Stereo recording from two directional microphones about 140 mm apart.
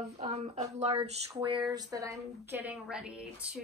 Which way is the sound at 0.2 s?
55° right (ahead or behind).